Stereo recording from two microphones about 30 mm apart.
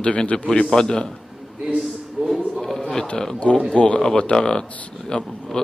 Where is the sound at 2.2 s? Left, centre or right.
Centre.